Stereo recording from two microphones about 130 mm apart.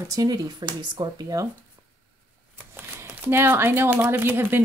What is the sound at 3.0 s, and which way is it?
Speech, 15° right (ahead or behind).